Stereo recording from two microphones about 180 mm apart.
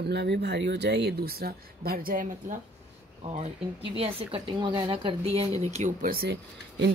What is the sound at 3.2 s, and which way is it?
Speech, 35° right (ahead or behind).